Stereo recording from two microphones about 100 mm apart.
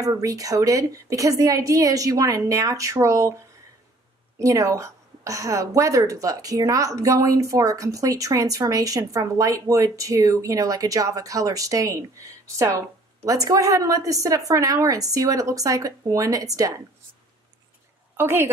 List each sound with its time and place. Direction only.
0.0 s a woman's voice: 35° right (ahead or behind)
4.4 s a woman's voice: 30° right (ahead or behind)
18.1 s a woman's voice: 20° right (ahead or behind)